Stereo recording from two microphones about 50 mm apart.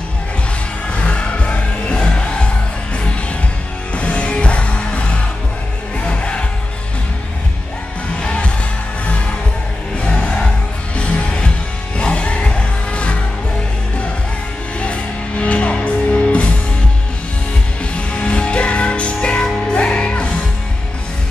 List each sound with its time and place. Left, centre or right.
0.9 s music: left
3.9 s music: left
8.2 s music: left
9.9 s a sound: centre
11.0 s music: left
14.8 s music: left
17.9 s music: left